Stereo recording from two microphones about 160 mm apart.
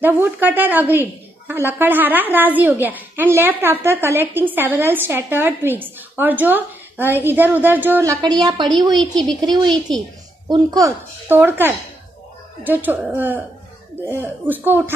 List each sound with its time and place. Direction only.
0.0 s a woman's voice: 10° right (ahead or behind)